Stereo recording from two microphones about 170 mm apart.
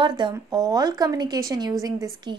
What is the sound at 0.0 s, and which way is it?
A woman's voice, 25° right (ahead or behind).